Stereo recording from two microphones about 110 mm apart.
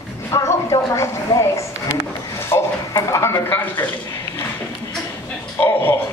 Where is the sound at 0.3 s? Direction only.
25° left (ahead or behind).